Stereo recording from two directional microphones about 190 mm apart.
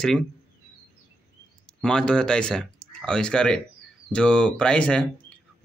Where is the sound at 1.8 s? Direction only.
5° left (ahead or behind).